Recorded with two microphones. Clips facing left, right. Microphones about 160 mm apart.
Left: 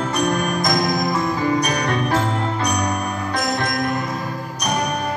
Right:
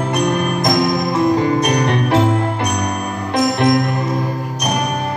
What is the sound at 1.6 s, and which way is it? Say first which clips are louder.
Music: right 4 dB; 20° right (ahead or behind).